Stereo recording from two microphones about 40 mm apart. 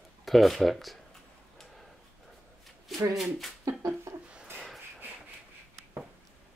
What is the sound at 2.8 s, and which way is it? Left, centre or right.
Speech, centre.